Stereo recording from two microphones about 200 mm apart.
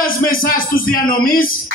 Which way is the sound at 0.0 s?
45° left (ahead or behind).